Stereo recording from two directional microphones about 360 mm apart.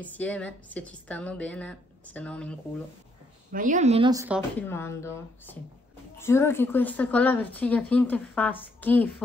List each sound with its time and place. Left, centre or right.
0.0 s a woman's voice: centre
3.5 s speech: right
4.6 s a woman's voice: centre